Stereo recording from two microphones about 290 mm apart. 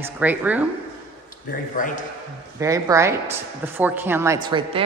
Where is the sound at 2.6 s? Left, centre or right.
Centre.